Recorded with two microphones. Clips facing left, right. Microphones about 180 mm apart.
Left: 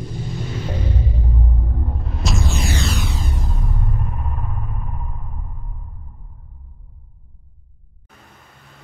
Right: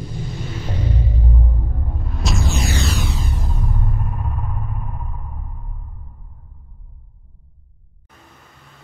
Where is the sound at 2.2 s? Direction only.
Centre (ahead or behind).